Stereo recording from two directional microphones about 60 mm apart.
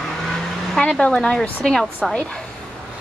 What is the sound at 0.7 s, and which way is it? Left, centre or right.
Speech, centre.